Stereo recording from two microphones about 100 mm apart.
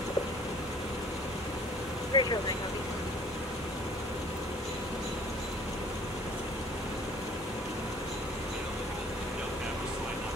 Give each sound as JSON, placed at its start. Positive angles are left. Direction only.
{"t": 2.1, "sound": "vehicle", "side_deg": 50}